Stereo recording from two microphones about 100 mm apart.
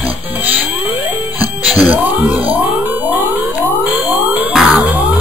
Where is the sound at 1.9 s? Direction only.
15° right (ahead or behind).